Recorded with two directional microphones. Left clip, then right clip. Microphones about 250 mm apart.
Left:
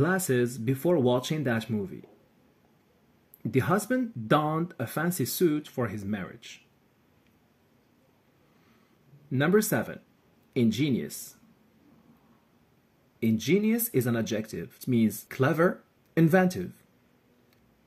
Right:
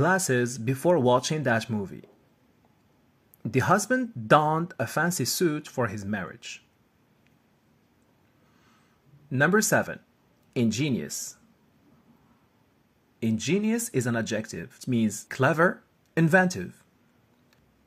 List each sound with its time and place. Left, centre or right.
0.0 s speech: centre
3.4 s speech: centre
9.3 s speech: centre
13.2 s speech: centre